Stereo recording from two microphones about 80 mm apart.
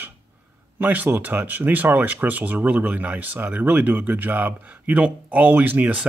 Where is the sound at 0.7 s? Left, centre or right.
Right.